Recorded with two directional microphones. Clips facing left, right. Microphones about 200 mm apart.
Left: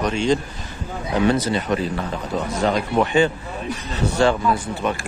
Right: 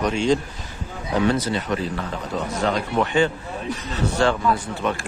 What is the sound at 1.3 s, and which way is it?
Speech, 15° left (ahead or behind).